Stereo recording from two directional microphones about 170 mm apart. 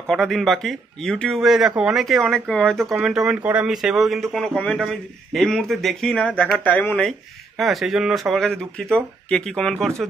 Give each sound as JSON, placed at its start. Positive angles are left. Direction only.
{"t": 0.0, "sound": "speech", "side_deg": 0}